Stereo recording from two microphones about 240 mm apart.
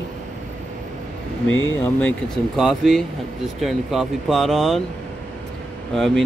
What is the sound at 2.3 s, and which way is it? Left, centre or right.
Speech, centre.